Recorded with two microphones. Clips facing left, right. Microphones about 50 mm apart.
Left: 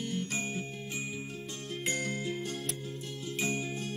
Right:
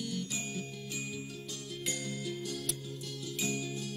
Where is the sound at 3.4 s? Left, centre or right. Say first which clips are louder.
Left 3 dB; left.